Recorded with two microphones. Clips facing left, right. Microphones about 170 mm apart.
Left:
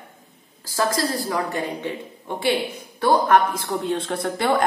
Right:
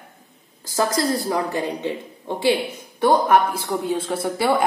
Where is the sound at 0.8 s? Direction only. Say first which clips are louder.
Right 2 dB; 20° right (ahead or behind).